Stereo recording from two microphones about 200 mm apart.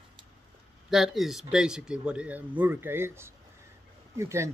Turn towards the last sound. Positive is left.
turn(degrees=-15)  # may be behind; listen again after turning